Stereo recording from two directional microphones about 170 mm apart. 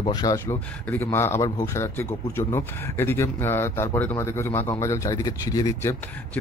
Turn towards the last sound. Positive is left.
turn(degrees=15)  # may be behind; listen again after turning